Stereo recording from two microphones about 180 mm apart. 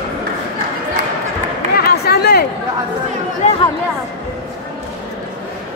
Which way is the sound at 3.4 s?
40° left (ahead or behind).